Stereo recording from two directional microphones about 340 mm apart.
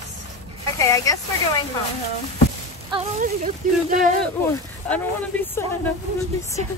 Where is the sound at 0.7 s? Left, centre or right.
Centre.